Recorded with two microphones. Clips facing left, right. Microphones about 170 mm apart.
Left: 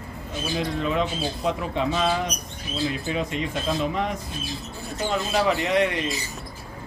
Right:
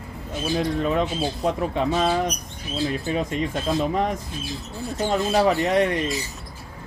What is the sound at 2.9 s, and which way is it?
Speech, 40° right (ahead or behind).